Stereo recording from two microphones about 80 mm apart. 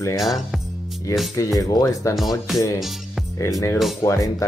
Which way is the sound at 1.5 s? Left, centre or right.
Left.